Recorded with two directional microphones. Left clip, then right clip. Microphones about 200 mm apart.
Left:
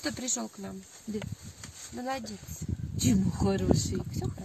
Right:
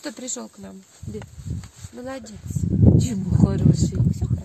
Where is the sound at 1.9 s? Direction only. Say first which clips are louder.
Right 1 dB; 50° right (ahead or behind).